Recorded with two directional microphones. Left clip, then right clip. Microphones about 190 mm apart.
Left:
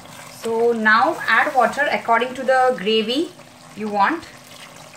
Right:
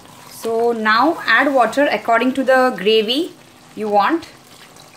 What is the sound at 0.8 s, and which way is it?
Speech, 50° right (ahead or behind).